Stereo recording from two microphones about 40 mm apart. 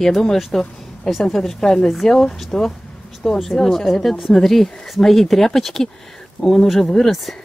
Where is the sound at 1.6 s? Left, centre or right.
Centre.